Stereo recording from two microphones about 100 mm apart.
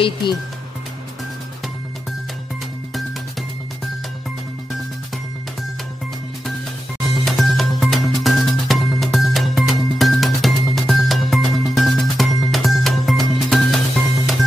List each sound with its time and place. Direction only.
0.0 s speech: 50° left (ahead or behind)
7.2 s music: centre (ahead or behind)